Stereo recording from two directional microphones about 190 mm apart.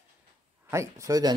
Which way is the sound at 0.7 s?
15° right (ahead or behind).